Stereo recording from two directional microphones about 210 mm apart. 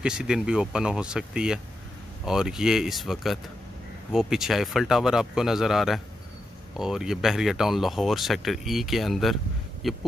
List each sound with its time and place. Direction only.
0.0 s speech: 5° right (ahead or behind)